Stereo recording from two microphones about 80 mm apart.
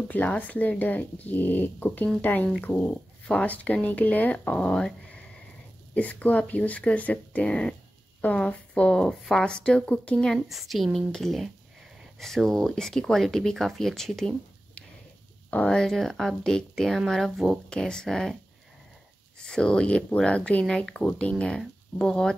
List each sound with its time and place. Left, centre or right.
0.1 s speech: centre
5.9 s speech: centre
10.1 s speech: centre
15.5 s speech: centre